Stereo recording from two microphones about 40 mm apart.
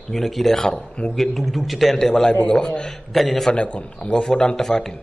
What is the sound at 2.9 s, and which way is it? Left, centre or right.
Speech, centre.